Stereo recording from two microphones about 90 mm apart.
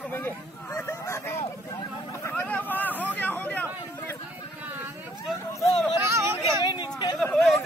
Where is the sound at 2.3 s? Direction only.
20° left (ahead or behind).